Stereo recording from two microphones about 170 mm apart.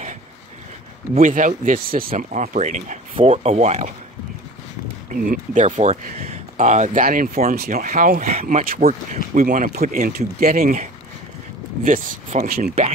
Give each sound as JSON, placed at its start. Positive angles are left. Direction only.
{"t": 1.1, "sound": "speech", "side_deg": -50}
{"t": 3.2, "sound": "speech", "side_deg": -35}
{"t": 5.1, "sound": "speech", "side_deg": -55}